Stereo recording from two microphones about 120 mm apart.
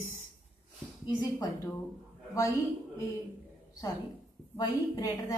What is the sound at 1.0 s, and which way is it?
Speech, 30° left (ahead or behind).